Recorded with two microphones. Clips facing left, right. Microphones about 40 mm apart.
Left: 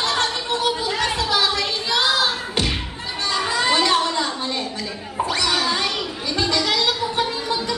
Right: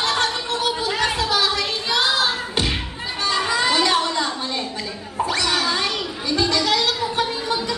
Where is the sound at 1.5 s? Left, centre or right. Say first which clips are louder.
Even; centre.